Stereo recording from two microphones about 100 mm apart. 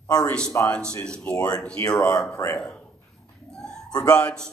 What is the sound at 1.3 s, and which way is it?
Speech, 40° left (ahead or behind).